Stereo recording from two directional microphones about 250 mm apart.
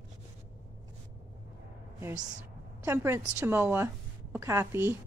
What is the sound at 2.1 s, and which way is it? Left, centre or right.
Speech, right.